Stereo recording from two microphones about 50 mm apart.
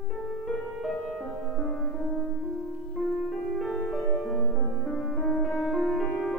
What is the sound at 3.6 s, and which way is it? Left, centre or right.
Music, centre.